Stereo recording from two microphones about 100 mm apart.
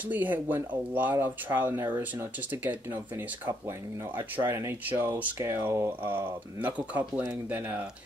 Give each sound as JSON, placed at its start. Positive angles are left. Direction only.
{"t": 0.1, "sound": "speech", "side_deg": -15}
{"t": 4.2, "sound": "speech", "side_deg": -20}